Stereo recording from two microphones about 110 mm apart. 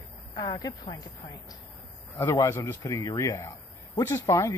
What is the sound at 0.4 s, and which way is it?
Speech, 35° left (ahead or behind).